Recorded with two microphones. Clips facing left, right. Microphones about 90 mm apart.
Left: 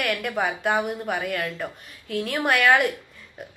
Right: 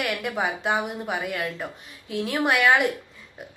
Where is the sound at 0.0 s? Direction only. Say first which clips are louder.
Left 1 dB; 15° right (ahead or behind).